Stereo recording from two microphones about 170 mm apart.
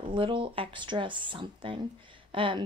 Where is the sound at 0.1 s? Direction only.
30° right (ahead or behind).